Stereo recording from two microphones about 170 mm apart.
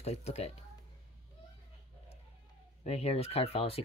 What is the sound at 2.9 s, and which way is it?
Speech, 40° left (ahead or behind).